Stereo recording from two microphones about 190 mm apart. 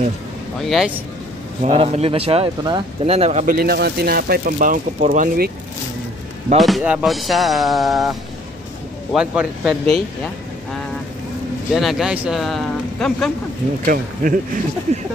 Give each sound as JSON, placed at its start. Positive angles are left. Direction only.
{"t": 0.7, "sound": "speech", "side_deg": -5}
{"t": 1.6, "sound": "speech", "side_deg": -35}
{"t": 3.5, "sound": "speech", "side_deg": -55}
{"t": 6.6, "sound": "speech", "side_deg": -5}
{"t": 11.7, "sound": "speech", "side_deg": 0}
{"t": 13.8, "sound": "speech", "side_deg": -45}